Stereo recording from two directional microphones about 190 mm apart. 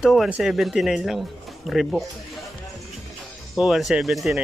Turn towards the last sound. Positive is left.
turn(degrees=0)  # may be behind; listen again after turning